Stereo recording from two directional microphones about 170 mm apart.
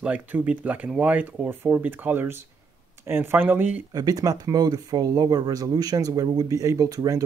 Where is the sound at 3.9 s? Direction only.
20° right (ahead or behind).